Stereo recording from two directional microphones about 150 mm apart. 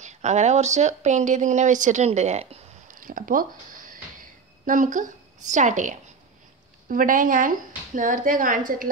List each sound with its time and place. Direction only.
0.0 s speech: 50° right (ahead or behind)
4.6 s a woman's voice: 60° right (ahead or behind)